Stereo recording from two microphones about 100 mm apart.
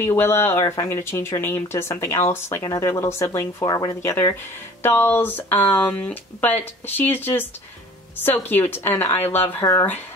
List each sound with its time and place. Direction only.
0.0 s speech: 25° left (ahead or behind)
4.8 s speech: 20° left (ahead or behind)